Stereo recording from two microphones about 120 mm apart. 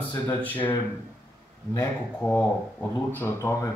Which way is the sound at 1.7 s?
15° left (ahead or behind).